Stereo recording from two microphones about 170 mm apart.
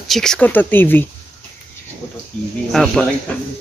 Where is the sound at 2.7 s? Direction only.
5° left (ahead or behind).